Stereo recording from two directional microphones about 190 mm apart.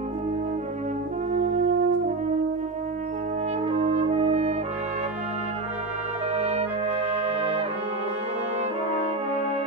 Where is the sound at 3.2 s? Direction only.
35° right (ahead or behind).